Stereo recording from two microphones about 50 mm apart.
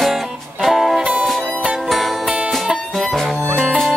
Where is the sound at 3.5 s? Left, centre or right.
Centre.